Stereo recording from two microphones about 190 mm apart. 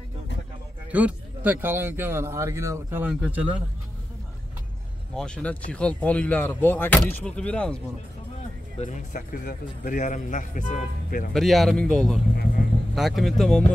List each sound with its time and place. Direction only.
0.9 s speech: 10° right (ahead or behind)
5.1 s speech: 5° left (ahead or behind)
8.7 s speech: 40° left (ahead or behind)
11.3 s speech: centre (ahead or behind)